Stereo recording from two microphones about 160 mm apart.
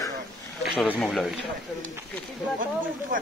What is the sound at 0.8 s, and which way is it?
Speech, 5° left (ahead or behind).